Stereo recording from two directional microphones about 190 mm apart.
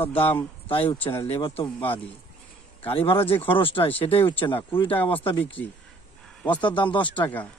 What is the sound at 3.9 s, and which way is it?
Speech, 10° left (ahead or behind).